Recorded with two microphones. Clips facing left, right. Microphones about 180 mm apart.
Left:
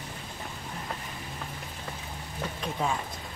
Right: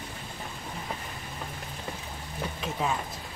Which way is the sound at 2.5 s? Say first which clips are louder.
Even; centre (ahead or behind).